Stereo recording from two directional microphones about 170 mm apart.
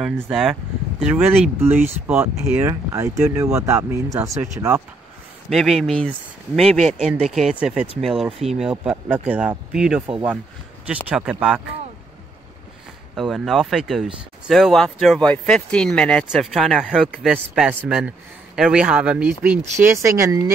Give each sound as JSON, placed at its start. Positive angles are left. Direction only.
{"t": 0.0, "sound": "speech", "side_deg": -5}
{"t": 5.5, "sound": "speech", "side_deg": 0}
{"t": 11.1, "sound": "speech", "side_deg": -5}
{"t": 13.1, "sound": "speech", "side_deg": 0}